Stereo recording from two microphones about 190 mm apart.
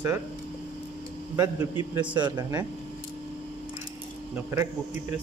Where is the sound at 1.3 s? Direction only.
15° right (ahead or behind).